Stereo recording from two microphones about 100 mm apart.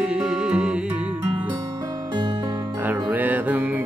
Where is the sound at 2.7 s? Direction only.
20° right (ahead or behind).